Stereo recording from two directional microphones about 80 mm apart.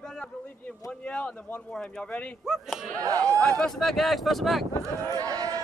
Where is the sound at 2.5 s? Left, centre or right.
Centre.